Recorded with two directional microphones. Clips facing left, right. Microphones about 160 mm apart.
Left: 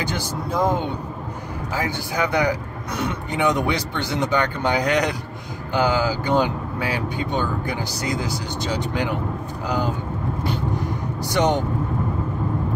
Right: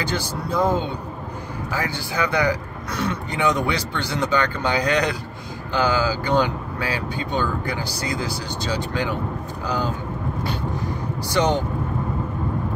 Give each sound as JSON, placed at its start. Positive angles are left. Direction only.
{"t": 0.0, "sound": "speech", "side_deg": 15}
{"t": 11.2, "sound": "speech", "side_deg": 20}